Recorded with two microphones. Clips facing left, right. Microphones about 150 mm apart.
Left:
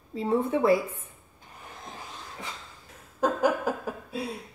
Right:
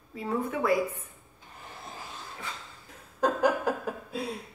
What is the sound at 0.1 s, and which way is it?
Speech, 25° left (ahead or behind).